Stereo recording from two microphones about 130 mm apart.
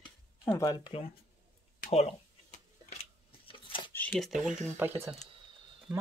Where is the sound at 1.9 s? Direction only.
55° left (ahead or behind).